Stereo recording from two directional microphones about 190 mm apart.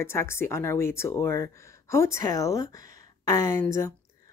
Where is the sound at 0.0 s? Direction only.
15° left (ahead or behind).